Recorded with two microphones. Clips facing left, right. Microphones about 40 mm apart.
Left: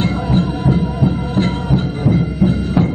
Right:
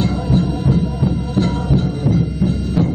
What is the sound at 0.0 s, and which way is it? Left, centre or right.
Music, left.